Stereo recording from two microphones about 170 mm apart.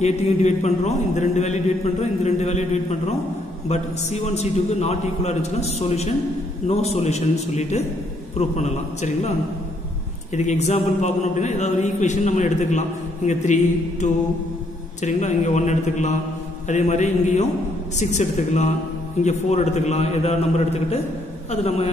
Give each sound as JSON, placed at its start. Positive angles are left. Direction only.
{"t": 0.0, "sound": "a man's voice", "side_deg": 40}
{"t": 10.3, "sound": "a man's voice", "side_deg": 45}